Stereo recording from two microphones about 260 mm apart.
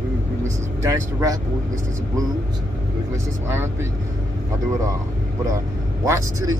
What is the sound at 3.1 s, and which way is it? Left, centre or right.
Speech, centre.